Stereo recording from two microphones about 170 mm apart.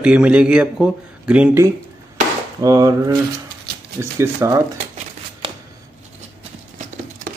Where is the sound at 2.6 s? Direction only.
20° right (ahead or behind).